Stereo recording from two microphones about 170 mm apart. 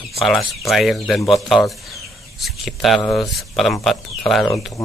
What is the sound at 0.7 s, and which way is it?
Speech, centre (ahead or behind).